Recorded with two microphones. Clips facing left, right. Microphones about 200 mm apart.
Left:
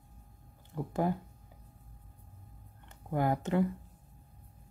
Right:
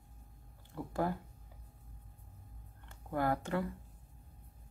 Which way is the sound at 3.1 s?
20° left (ahead or behind).